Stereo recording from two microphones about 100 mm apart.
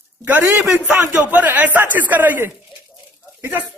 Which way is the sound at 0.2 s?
20° right (ahead or behind).